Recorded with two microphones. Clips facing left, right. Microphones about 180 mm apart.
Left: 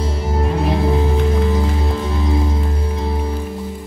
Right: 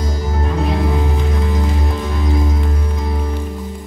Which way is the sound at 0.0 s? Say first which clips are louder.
Left 1 dB; 30° left (ahead or behind).